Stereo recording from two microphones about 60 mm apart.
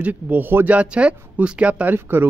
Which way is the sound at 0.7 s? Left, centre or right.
Centre.